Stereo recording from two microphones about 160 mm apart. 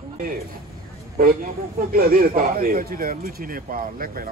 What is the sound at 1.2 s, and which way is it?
Speech, 65° right (ahead or behind).